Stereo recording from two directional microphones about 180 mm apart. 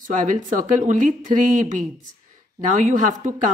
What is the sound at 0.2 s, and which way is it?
A woman's voice, 45° right (ahead or behind).